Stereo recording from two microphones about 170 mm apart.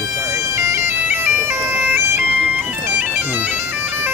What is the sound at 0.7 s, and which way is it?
Bagpipes, 15° right (ahead or behind).